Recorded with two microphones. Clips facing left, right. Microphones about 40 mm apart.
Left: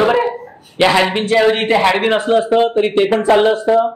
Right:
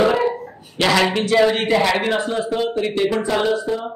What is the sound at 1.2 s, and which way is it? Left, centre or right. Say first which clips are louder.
Speech: left 3 dB; left.